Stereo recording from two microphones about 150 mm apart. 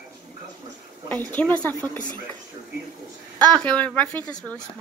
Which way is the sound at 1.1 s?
10° left (ahead or behind).